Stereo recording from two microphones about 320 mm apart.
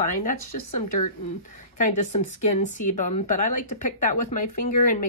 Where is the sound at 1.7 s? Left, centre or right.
Left.